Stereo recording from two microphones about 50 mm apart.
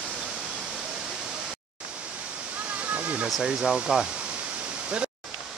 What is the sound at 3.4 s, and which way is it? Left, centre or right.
Speech, centre.